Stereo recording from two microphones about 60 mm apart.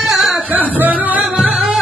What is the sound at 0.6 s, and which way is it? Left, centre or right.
Music, right.